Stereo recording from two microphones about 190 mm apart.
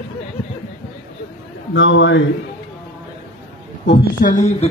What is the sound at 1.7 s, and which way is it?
Speech, 80° left.